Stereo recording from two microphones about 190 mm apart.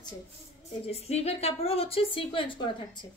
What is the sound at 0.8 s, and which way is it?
A woman's voice, 35° left (ahead or behind).